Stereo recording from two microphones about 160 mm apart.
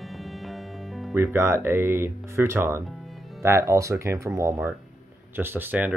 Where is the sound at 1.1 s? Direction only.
15° right (ahead or behind).